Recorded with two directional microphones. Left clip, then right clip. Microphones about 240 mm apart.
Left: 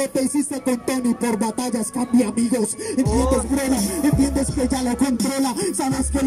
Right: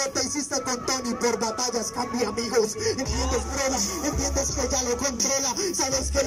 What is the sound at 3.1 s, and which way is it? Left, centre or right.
Music, left.